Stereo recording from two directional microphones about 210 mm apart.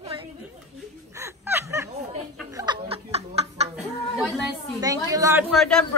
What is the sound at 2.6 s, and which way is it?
Snicker, 25° right (ahead or behind).